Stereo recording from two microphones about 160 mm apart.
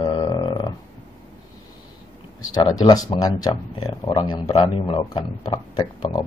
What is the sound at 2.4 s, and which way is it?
Speech, 25° left (ahead or behind).